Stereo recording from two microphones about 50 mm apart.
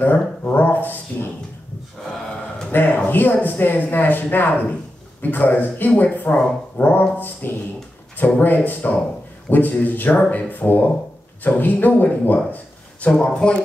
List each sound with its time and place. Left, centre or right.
0.0 s speech: left
2.0 s gasp: centre
2.7 s speech: left
13.1 s speech: centre